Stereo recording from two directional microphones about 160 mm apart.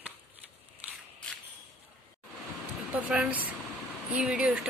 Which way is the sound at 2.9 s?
5° right (ahead or behind).